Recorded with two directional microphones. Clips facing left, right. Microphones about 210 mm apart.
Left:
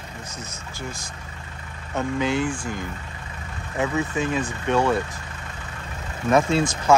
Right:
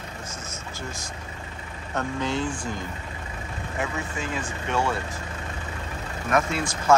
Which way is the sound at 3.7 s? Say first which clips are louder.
Left 7 dB; 20° left (ahead or behind).